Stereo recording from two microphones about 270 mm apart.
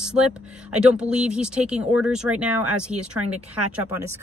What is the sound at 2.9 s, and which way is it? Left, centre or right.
Speech, right.